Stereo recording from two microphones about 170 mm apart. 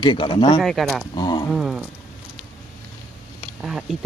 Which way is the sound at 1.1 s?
25° left (ahead or behind).